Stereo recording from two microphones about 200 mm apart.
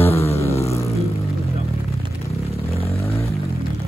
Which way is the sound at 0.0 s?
30° left (ahead or behind).